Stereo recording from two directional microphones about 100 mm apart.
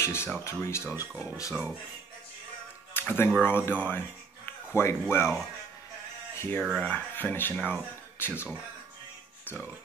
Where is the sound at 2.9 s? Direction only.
20° left (ahead or behind).